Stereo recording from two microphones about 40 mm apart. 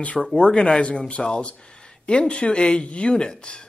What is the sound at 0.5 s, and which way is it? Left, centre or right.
A man's voice, centre.